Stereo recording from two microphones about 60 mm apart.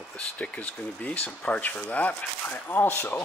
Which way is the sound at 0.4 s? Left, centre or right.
Left.